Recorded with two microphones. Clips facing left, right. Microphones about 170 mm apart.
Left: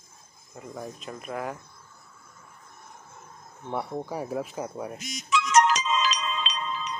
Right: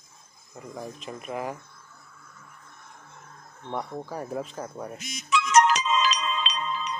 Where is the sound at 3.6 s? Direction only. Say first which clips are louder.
Left 2 dB; 10° left (ahead or behind).